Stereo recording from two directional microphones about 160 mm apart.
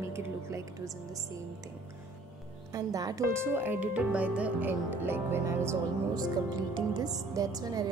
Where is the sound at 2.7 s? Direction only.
20° right (ahead or behind).